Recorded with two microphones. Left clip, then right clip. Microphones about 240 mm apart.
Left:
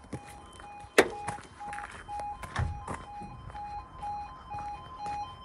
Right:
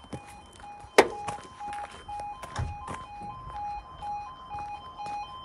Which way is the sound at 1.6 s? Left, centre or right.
Centre.